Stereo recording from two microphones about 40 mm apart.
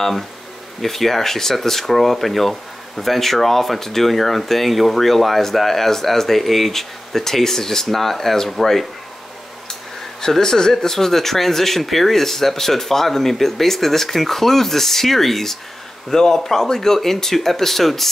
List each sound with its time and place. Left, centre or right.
0.8 s speech: centre
10.2 s speech: centre